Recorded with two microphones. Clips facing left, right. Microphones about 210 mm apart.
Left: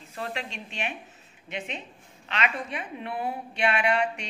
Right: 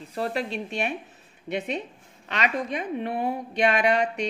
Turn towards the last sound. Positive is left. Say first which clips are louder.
# right 3 dB
turn(degrees=-35)  # may be behind; listen again after turning